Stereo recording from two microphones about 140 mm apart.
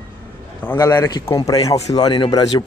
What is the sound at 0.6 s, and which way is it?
Speech, 15° left (ahead or behind).